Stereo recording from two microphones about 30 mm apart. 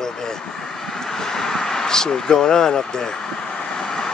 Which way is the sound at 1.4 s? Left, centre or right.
Centre.